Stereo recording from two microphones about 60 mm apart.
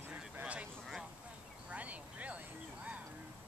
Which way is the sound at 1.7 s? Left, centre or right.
Right.